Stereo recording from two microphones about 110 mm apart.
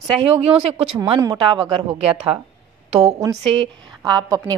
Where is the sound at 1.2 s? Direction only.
45° right (ahead or behind).